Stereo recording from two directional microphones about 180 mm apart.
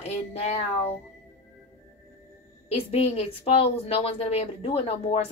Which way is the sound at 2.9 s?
35° left (ahead or behind).